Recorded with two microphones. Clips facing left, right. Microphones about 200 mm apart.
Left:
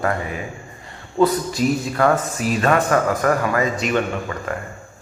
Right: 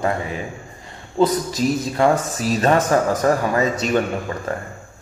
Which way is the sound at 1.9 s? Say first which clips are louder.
Right 2 dB; 15° right (ahead or behind).